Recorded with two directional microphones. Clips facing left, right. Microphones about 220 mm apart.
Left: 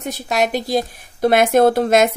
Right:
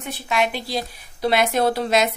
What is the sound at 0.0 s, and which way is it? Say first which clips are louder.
Speech: left 3 dB; 40° left (ahead or behind).